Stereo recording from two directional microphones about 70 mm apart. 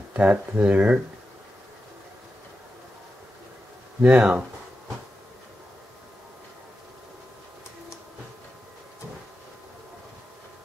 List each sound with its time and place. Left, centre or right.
0.1 s speech: centre
4.0 s speech: centre